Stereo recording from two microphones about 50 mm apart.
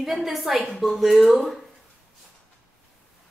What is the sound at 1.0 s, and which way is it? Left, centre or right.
Speech, centre.